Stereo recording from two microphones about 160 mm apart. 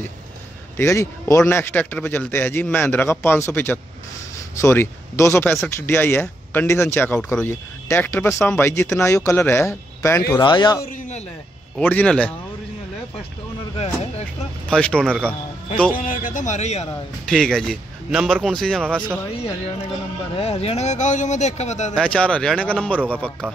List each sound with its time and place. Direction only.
0.7 s speech: 15° left (ahead or behind)
11.8 s speech: 10° left (ahead or behind)
14.7 s speech: 5° left (ahead or behind)
15.9 s speech: 55° left (ahead or behind)
17.3 s speech: 5° left (ahead or behind)
20.3 s speech: 40° left (ahead or behind)
21.9 s speech: 5° left (ahead or behind)